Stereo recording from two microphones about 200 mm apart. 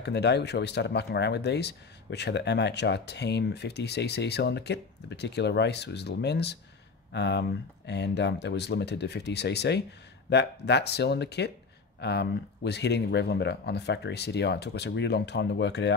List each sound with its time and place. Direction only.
0.0 s speech: 60° left (ahead or behind)